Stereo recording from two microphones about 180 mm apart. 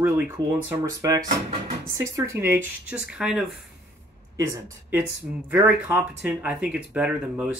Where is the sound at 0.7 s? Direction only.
20° right (ahead or behind); by 3.5 s centre (ahead or behind).